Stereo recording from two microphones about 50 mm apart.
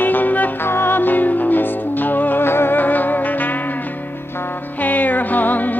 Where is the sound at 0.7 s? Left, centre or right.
Left.